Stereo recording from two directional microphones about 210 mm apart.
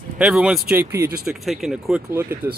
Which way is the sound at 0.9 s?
50° right (ahead or behind).